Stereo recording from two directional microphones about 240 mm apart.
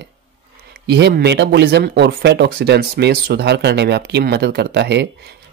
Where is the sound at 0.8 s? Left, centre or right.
Right.